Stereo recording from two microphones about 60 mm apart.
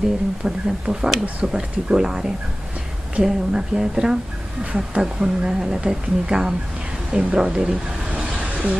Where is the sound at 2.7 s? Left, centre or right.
Centre.